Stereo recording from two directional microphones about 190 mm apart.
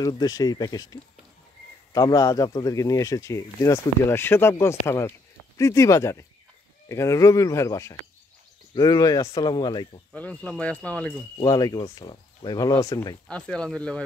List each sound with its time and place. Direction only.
0.0 s speech: 20° left (ahead or behind)
10.1 s speech: 5° left (ahead or behind)
11.3 s speech: 20° left (ahead or behind)
13.3 s speech: 5° left (ahead or behind)